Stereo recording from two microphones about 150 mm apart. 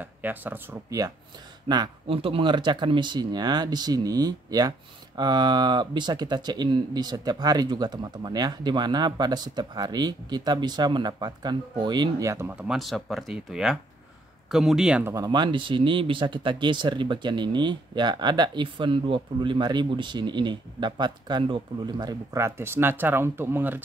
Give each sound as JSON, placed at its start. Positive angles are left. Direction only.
{"t": 0.0, "sound": "speech", "side_deg": -10}
{"t": 1.7, "sound": "speech", "side_deg": -35}
{"t": 12.5, "sound": "speech", "side_deg": 0}
{"t": 15.1, "sound": "speech", "side_deg": -30}